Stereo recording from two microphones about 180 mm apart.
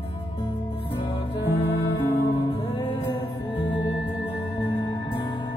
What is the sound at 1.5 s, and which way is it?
Music, 30° left (ahead or behind).